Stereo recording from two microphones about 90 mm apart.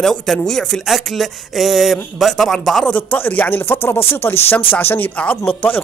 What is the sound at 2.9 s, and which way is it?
Speech, 15° left (ahead or behind).